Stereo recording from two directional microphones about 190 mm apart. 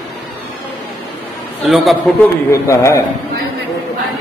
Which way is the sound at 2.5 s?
15° left (ahead or behind).